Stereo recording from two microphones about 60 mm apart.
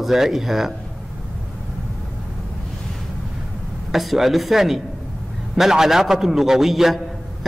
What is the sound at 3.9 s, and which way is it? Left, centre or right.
A man's voice, centre.